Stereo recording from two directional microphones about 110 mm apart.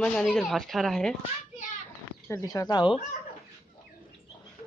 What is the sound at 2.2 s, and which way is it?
Speech, 30° left (ahead or behind).